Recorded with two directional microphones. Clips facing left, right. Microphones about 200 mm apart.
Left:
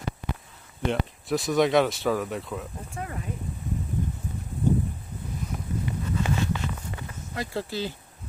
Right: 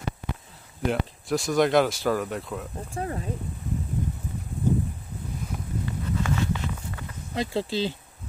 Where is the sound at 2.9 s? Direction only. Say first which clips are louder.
Right 6 dB; 35° right (ahead or behind).